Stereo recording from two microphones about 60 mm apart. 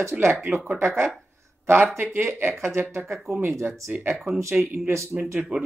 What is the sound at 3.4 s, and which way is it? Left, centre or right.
Speech, right.